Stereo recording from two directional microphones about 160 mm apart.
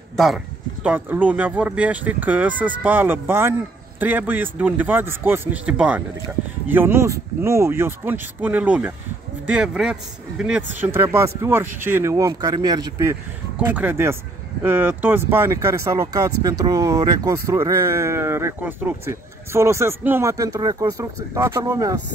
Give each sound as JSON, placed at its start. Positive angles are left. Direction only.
{"t": 0.1, "sound": "speech", "side_deg": 0}
{"t": 0.8, "sound": "speech", "side_deg": -10}